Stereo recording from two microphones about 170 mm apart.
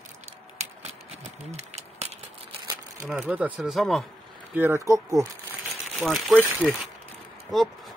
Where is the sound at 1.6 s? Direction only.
40° right (ahead or behind).